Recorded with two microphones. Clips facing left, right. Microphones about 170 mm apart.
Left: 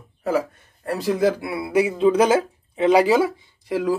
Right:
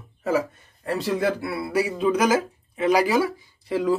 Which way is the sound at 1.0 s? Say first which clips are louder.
Left 5 dB; 10° left (ahead or behind).